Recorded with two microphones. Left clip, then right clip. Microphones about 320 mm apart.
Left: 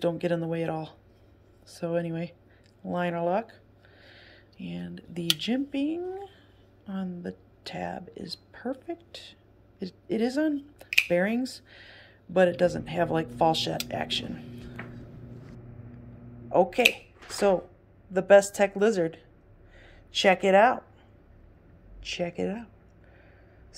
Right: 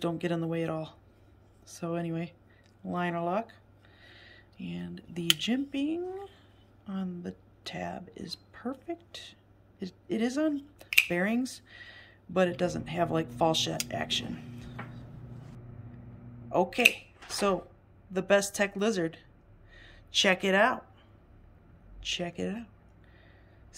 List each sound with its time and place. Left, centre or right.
0.0 s a woman's voice: centre
16.4 s speech: centre
18.1 s a woman's voice: centre
22.0 s a woman's voice: centre